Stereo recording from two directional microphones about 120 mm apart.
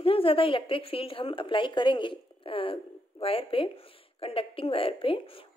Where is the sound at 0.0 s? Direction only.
50° left (ahead or behind).